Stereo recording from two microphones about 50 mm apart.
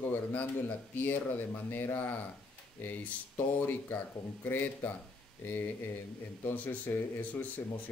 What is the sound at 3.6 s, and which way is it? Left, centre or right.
Speech, left.